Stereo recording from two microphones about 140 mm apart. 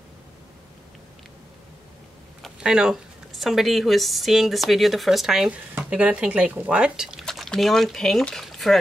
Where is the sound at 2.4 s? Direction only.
5° right (ahead or behind).